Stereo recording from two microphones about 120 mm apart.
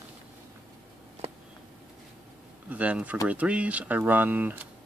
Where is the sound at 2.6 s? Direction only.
10° right (ahead or behind).